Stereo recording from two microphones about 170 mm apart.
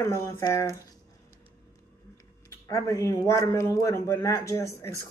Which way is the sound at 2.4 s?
20° left (ahead or behind).